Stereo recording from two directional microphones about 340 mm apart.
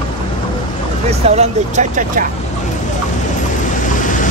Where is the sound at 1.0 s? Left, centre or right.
Centre.